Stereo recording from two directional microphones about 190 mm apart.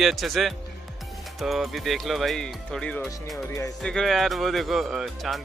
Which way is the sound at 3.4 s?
15° left (ahead or behind).